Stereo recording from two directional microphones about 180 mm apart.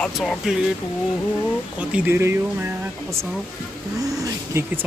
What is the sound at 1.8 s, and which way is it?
Speech, 5° right (ahead or behind).